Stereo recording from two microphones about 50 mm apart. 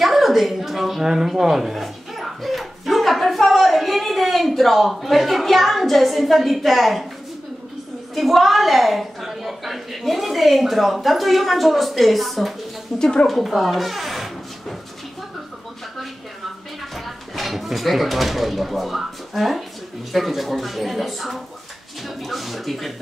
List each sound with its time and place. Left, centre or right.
0.0 s a woman's voice: centre
8.1 s a woman's voice: centre
13.0 s a woman's voice: centre
13.3 s a sound: centre
16.9 s a woman's voice: centre